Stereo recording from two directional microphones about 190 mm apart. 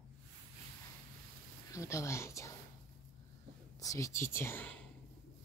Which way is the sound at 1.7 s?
15° left (ahead or behind).